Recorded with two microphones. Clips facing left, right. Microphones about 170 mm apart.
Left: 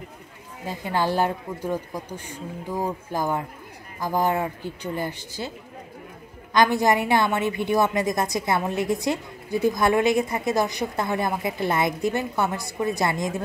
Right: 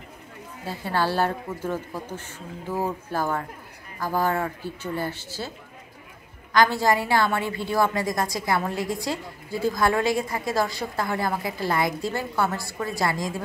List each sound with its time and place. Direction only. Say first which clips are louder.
0.7 s a woman's voice: left 1 dB; 15° left (ahead or behind)
6.5 s a woman's voice: left 1 dB; 20° left (ahead or behind)